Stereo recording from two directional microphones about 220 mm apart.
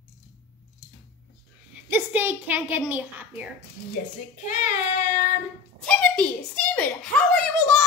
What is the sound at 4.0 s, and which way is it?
Speech, 40° left (ahead or behind).